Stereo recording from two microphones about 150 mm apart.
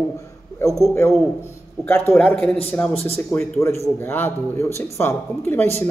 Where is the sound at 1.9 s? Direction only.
5° left (ahead or behind).